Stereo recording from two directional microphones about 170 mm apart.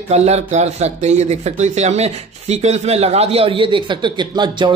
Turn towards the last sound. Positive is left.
turn(degrees=-25)  # may be behind; listen again after turning